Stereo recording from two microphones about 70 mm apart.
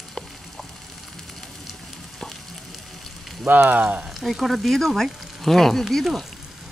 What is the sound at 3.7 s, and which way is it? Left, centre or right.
Speech, right.